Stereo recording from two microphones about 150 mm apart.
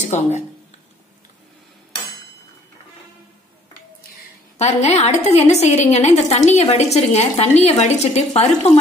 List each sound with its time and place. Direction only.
0.0 s speech: 50° left (ahead or behind)
4.6 s a woman's voice: 50° left (ahead or behind)